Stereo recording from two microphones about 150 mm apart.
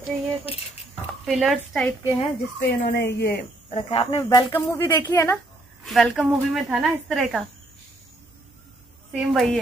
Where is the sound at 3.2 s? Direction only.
90° left.